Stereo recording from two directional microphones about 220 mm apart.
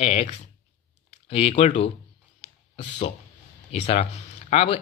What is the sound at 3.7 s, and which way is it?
Speech, 25° left (ahead or behind).